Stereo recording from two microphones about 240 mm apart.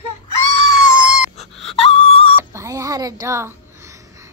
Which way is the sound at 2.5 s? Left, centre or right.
Centre.